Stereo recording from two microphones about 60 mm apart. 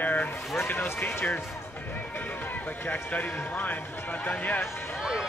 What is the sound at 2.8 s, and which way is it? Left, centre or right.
A man's voice, left.